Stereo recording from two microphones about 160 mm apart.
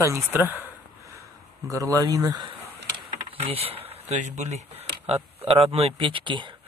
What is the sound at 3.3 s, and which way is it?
A man's voice, 35° right (ahead or behind).